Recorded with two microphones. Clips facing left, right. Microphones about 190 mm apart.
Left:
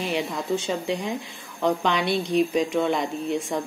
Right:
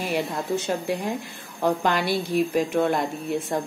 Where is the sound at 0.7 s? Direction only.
5° right (ahead or behind).